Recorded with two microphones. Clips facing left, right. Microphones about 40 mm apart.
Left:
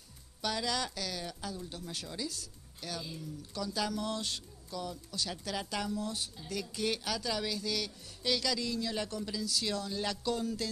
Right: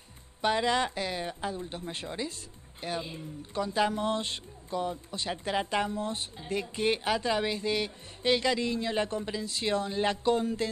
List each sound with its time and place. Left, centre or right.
0.4 s speech: right